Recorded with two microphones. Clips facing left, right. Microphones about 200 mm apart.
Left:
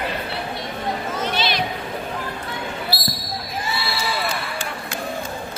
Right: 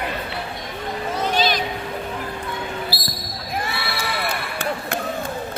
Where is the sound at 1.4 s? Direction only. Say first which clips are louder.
Right 4 dB; 45° right (ahead or behind).